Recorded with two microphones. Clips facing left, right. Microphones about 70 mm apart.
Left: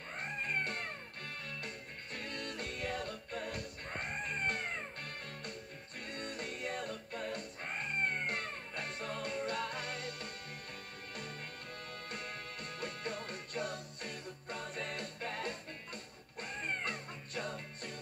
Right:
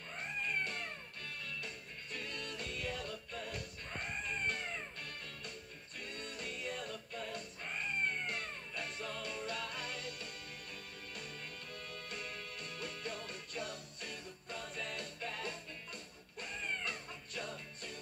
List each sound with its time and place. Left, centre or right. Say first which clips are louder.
0.4 s music: left 1 dB; left
2.1 s music: left 2 dB; left
6.0 s music: left 3 dB; left
11.9 s music: left 2 dB; left